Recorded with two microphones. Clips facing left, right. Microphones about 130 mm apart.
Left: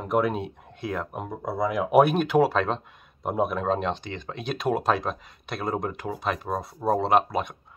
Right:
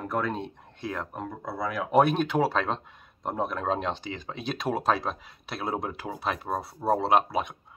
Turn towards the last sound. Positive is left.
turn(degrees=0)  # may be behind; listen again after turning